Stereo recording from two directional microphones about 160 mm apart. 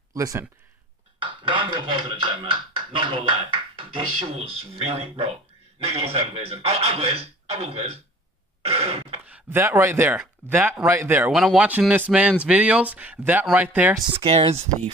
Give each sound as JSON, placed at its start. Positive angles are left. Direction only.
{"t": 0.1, "sound": "speech", "side_deg": -20}
{"t": 1.2, "sound": "speech", "side_deg": -30}
{"t": 8.6, "sound": "throat clearing", "side_deg": -40}
{"t": 9.2, "sound": "speech", "side_deg": -10}
{"t": 14.1, "sound": "speech", "side_deg": -35}